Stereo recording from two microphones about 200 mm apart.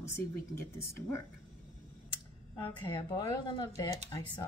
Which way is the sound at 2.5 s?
25° left (ahead or behind).